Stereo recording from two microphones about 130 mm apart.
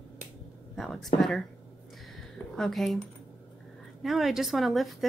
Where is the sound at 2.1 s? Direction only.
Centre (ahead or behind).